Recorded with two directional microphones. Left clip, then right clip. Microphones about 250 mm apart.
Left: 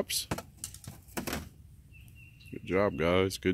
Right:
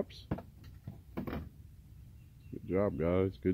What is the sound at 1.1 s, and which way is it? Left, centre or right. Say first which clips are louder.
Thunk: left 5 dB; left.